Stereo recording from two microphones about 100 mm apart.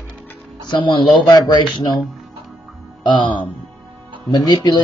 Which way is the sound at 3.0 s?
55° left (ahead or behind).